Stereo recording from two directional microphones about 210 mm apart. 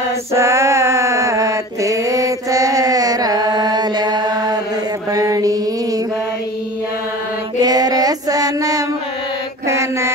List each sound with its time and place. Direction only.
0.3 s mantra: 15° right (ahead or behind)
7.6 s child singing: 20° right (ahead or behind)
9.7 s mantra: 15° right (ahead or behind)